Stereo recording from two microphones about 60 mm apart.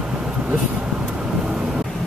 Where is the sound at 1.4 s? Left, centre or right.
Centre.